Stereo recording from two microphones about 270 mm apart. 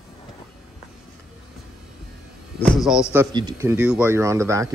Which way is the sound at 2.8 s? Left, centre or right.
Centre.